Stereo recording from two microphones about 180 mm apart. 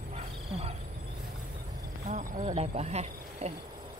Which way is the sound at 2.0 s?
45° right (ahead or behind).